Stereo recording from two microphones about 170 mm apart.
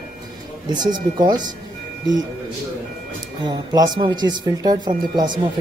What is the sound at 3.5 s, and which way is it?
Speech, 25° right (ahead or behind).